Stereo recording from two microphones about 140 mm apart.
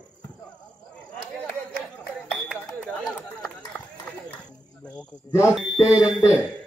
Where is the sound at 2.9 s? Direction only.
10° left (ahead or behind).